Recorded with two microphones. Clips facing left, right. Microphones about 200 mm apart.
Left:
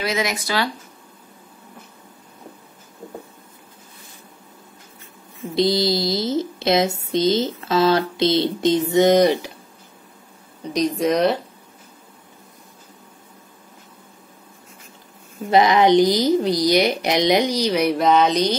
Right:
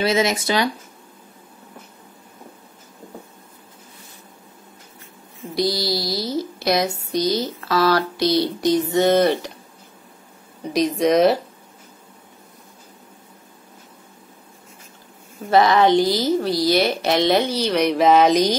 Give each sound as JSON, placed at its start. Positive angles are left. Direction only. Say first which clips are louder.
{"t": 0.0, "sound": "speech", "louder": "right 4 dB", "side_deg": -25}
{"t": 5.5, "sound": "speech", "louder": "left 3 dB", "side_deg": 20}
{"t": 10.7, "sound": "speech", "louder": "right 2 dB", "side_deg": 0}
{"t": 15.5, "sound": "speech", "louder": "left 1 dB", "side_deg": 20}
{"t": 17.9, "sound": "speech", "louder": "right 6 dB", "side_deg": -5}